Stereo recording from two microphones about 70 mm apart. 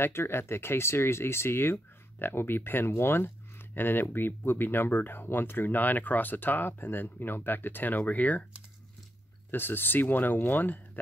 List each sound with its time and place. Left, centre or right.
0.0 s speech: left
9.5 s speech: left